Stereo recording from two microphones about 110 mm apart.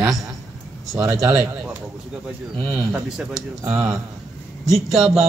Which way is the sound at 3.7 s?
15° right (ahead or behind).